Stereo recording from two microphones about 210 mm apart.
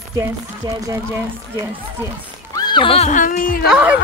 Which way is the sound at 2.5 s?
20° left (ahead or behind).